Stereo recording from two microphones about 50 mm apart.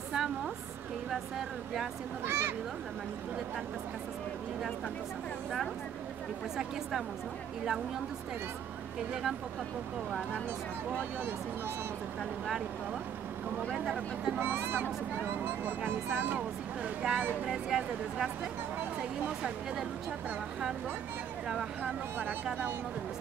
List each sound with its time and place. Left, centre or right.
0.1 s a sound: centre
2.2 s speech: right
6.5 s a woman's voice: centre
12.2 s a woman's voice: centre
13.8 s speech: centre
14.4 s speech: right
16.2 s speech: right
17.0 s speech: right
17.5 s speech: centre
21.8 s speech: right